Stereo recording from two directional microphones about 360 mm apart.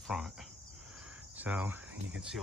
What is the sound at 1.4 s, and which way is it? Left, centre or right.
Speech, centre.